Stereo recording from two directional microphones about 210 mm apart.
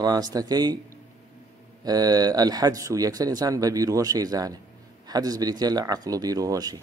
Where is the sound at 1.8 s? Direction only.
20° right (ahead or behind).